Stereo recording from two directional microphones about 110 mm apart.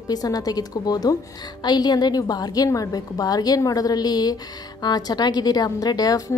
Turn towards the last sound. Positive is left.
turn(degrees=35)  # may be behind; listen again after turning